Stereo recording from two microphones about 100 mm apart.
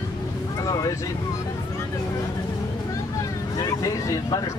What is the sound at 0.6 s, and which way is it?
Vehicle, 35° left (ahead or behind).